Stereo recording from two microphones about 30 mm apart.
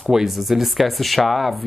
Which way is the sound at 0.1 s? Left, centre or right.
Centre.